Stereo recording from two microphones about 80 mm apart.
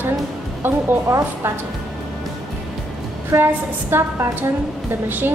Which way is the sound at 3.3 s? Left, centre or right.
Right.